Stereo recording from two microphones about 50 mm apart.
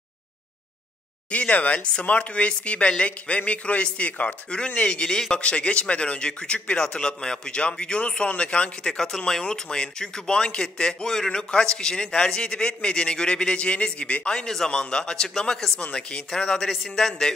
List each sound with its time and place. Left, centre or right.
1.3 s speech: left
8.8 s speech: centre
15.8 s speech: left
16.8 s a man's voice: centre